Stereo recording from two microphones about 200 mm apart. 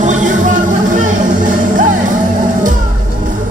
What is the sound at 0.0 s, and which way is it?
Music, 40° right (ahead or behind).